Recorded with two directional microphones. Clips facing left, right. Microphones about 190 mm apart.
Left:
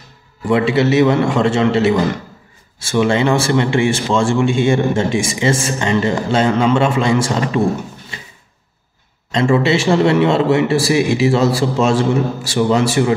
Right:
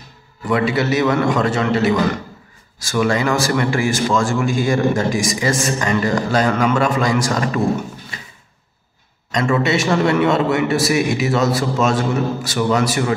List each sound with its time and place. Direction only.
0.5 s a man's voice: 25° left (ahead or behind)
9.3 s a man's voice: 25° left (ahead or behind)